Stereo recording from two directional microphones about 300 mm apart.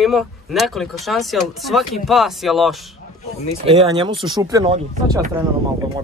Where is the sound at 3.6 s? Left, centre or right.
Centre.